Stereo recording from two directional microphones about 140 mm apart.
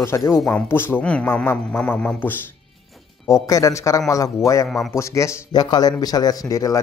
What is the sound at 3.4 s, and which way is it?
Speech, 25° left (ahead or behind).